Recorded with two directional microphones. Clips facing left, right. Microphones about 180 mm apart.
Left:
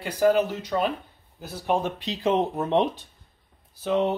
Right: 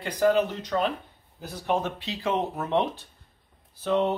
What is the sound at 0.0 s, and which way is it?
Speech, 10° left (ahead or behind).